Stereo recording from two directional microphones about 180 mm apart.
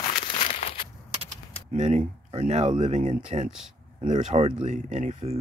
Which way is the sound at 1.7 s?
40° right (ahead or behind).